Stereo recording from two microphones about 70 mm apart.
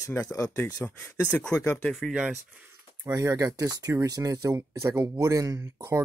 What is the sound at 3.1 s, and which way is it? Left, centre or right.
Speech, right.